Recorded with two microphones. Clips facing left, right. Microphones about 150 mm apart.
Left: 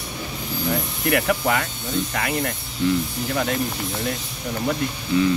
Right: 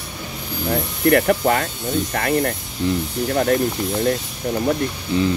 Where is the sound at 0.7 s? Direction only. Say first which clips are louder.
Right 6 dB; 40° right (ahead or behind).